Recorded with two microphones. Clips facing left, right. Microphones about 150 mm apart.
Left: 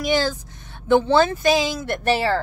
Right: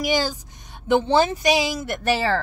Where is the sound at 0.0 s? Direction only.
10° right (ahead or behind).